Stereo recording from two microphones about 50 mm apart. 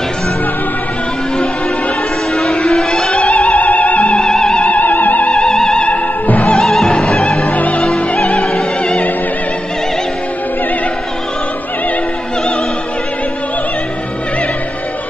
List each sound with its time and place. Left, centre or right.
2.4 s music: centre
3.3 s music: left
4.2 s music: centre
4.6 s music: left
5.3 s music: centre
6.2 s music: left
6.5 s music: centre
7.2 s music: left
8.4 s opera: centre